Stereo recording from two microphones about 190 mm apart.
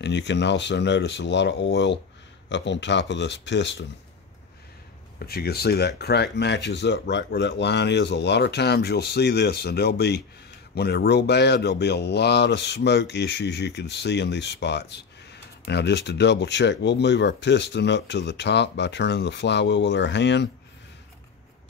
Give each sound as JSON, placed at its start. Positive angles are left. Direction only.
{"t": 0.0, "sound": "speech", "side_deg": 65}
{"t": 5.2, "sound": "a man's voice", "side_deg": 55}